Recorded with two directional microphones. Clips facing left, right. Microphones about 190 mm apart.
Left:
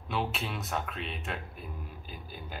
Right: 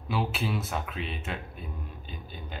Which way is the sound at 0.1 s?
Centre (ahead or behind).